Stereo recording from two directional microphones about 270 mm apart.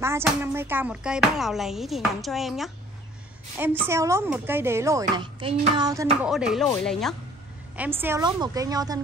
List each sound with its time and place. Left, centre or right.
0.2 s a woman's voice: centre
6.2 s a woman's voice: centre